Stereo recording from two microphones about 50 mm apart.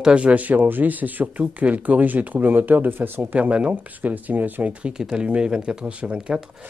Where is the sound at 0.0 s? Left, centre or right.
Right.